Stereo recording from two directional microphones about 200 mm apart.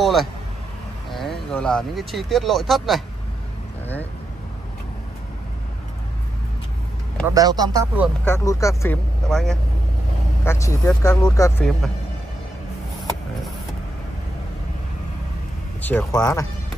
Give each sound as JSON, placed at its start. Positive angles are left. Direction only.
{"t": 0.0, "sound": "a sound", "side_deg": 0}
{"t": 1.1, "sound": "speech", "side_deg": 0}
{"t": 7.2, "sound": "speech", "side_deg": -20}
{"t": 8.3, "sound": "speech", "side_deg": 15}
{"t": 9.3, "sound": "speech", "side_deg": 0}
{"t": 10.4, "sound": "speech", "side_deg": 10}
{"t": 15.8, "sound": "speech", "side_deg": 10}